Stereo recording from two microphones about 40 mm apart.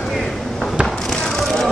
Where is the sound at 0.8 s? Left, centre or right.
Centre.